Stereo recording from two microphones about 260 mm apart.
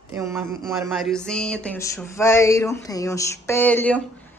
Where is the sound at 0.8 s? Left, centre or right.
Centre.